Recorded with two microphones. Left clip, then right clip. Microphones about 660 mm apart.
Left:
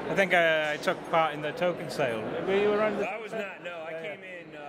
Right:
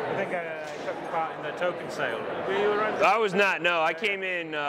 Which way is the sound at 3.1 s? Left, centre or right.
Right.